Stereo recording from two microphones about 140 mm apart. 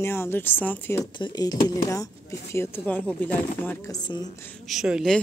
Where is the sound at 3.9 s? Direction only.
30° left (ahead or behind).